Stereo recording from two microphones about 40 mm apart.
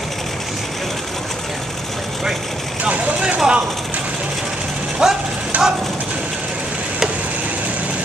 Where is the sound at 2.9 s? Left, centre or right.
Right.